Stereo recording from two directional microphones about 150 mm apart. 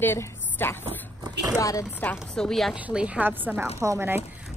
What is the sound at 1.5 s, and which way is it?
Chopping, 20° left (ahead or behind).